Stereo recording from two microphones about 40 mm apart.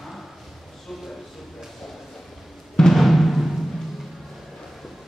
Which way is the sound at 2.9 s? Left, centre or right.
Centre.